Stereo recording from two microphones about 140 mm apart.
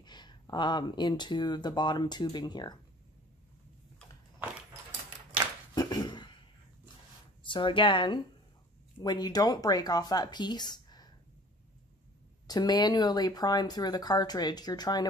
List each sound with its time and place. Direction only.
0.0 s speech: 30° left (ahead or behind)
5.8 s a sound: 30° left (ahead or behind)
7.4 s speech: 35° left (ahead or behind)
12.4 s speech: 30° left (ahead or behind)